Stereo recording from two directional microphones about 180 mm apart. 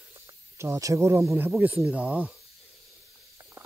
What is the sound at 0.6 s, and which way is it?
Speech, 15° right (ahead or behind).